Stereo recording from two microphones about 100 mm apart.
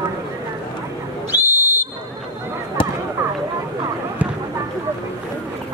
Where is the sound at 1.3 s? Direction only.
20° right (ahead or behind).